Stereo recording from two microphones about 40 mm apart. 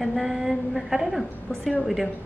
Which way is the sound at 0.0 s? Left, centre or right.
Centre.